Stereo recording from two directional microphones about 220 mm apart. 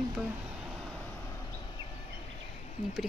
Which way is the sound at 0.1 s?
5° right (ahead or behind).